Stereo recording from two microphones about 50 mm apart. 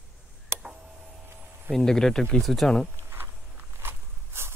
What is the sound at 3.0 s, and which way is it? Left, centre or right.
Walk, right.